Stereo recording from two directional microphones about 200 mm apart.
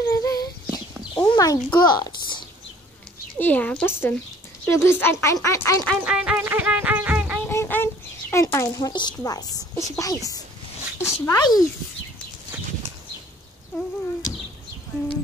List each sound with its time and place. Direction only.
0.1 s a sound: 15° left (ahead or behind)
3.3 s speech: 10° left (ahead or behind)
5.9 s music: 5° right (ahead or behind)
7.4 s speech: 10° left (ahead or behind)